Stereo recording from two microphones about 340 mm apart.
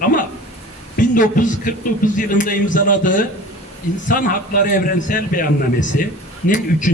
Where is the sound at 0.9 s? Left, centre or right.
Left.